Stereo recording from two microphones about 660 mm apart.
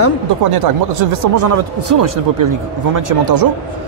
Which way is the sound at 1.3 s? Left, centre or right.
Right.